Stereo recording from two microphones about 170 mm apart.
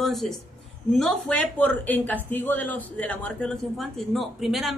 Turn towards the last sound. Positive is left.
turn(degrees=0)  # may be behind; listen again after turning